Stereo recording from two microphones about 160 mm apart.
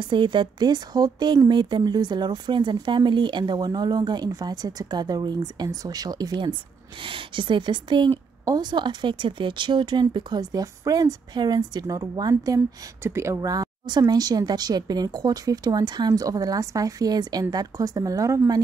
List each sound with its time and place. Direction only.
0.0 s a woman's voice: 30° right (ahead or behind)